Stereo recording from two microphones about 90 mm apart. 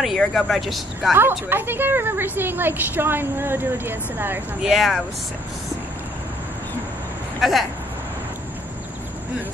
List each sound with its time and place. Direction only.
0.0 s speech: centre (ahead or behind)
1.5 s a woman's voice: 25° right (ahead or behind)
4.6 s speech: centre (ahead or behind)
7.3 s speech: centre (ahead or behind)